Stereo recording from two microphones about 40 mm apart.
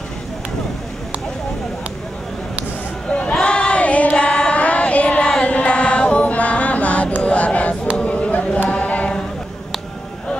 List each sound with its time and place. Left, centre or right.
3.1 s a sound: left
3.3 s female singing: left
5.4 s chant: left
7.2 s music: left
8.0 s a sound: left
8.6 s chant: left